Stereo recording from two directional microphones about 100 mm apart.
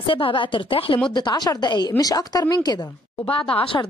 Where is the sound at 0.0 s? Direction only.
60° left (ahead or behind).